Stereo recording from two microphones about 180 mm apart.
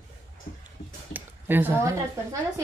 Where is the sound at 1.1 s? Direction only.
10° right (ahead or behind).